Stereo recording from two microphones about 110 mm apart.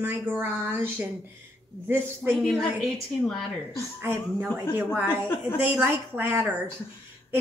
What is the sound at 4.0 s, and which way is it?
A woman's voice, 20° right (ahead or behind).